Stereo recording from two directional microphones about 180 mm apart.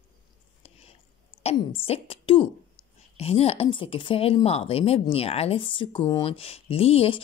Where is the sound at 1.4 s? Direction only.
30° left (ahead or behind).